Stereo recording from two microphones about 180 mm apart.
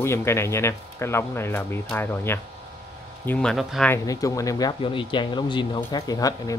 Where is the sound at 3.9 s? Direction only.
20° left (ahead or behind).